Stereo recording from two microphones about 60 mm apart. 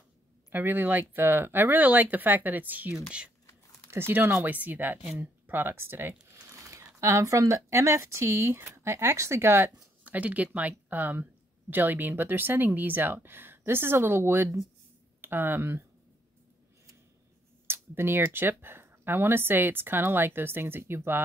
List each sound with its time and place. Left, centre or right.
0.5 s speech: right
3.9 s speech: right
4.5 s speech: right
6.4 s speech: right
10.0 s speech: right
17.6 s speech: right